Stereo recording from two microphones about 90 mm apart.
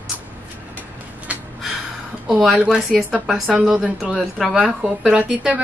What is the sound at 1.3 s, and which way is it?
Gasp, 15° right (ahead or behind).